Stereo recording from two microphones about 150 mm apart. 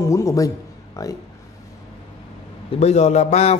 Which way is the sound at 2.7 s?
45° left (ahead or behind).